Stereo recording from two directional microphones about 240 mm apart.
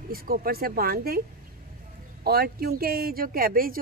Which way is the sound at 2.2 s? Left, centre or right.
Right.